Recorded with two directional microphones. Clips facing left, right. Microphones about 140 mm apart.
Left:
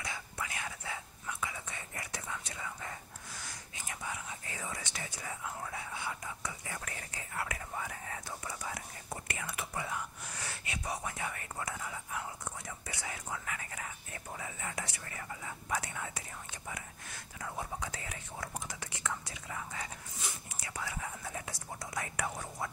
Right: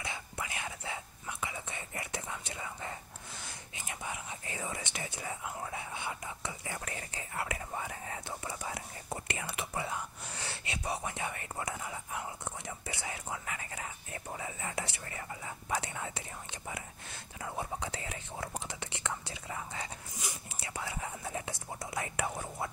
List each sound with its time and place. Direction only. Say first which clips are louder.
0.0 s whispering: right 1 dB; 25° right (ahead or behind)